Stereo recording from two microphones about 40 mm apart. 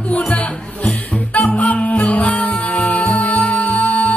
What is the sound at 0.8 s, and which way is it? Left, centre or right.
Music, left.